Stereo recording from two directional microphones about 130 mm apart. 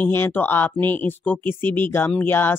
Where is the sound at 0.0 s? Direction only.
15° left (ahead or behind).